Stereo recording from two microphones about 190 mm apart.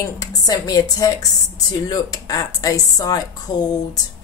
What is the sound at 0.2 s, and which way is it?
Speech, 20° left (ahead or behind).